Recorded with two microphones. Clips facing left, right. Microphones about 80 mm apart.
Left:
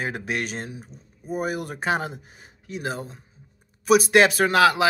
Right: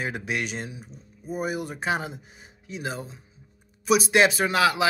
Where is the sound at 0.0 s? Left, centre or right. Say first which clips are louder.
Left 1 dB; left.